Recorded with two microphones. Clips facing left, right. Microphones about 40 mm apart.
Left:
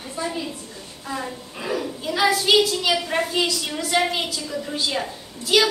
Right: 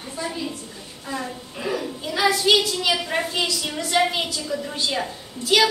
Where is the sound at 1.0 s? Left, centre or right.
Centre.